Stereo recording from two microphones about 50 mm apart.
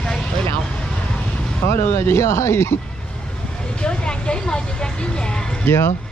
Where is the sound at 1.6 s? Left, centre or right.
Left.